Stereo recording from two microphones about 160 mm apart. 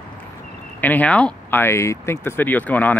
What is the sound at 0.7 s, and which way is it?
Speech, 10° left (ahead or behind).